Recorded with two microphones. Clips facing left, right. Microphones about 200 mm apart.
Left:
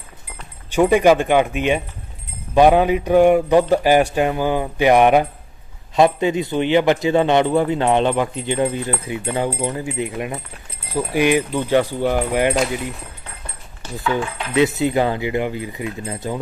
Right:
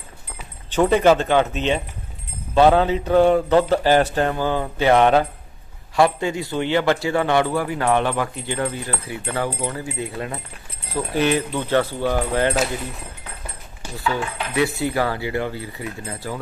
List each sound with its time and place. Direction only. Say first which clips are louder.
0.7 s a man's voice: left 2 dB; 10° left (ahead or behind)
14.1 s a man's voice: left 5 dB; 20° left (ahead or behind)